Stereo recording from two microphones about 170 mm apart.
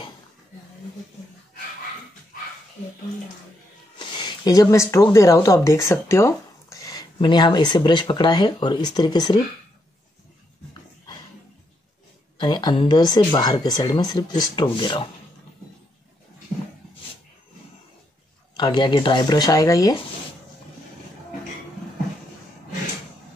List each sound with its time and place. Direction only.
4.0 s speech: 25° left (ahead or behind)
12.4 s speech: 25° left (ahead or behind)
18.6 s speech: 25° left (ahead or behind)